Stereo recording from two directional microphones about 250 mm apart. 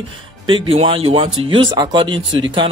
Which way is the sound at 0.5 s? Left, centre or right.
Right.